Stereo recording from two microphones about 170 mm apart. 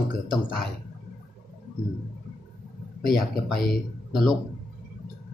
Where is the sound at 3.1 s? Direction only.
60° left (ahead or behind).